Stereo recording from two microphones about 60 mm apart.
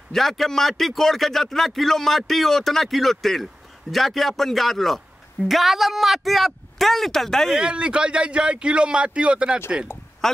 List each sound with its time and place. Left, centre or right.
0.1 s a woman's voice: centre
7.5 s a man's voice: centre
10.2 s speech: centre